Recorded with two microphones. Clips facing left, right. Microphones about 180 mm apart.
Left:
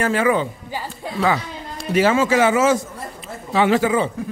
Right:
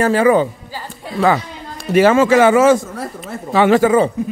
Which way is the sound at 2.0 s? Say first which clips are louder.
Right 5 dB; 55° right (ahead or behind).